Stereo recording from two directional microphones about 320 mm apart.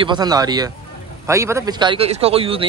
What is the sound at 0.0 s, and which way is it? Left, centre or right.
A man's voice, centre.